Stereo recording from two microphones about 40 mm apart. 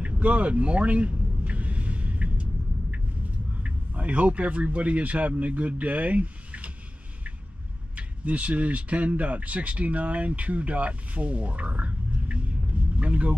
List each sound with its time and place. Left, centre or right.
0.0 s vehicle: right
3.6 s speech: right
7.9 s speech: right